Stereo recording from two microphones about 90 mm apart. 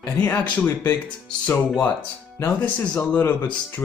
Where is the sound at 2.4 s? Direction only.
25° left (ahead or behind).